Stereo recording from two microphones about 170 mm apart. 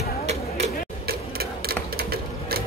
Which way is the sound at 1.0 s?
65° right (ahead or behind).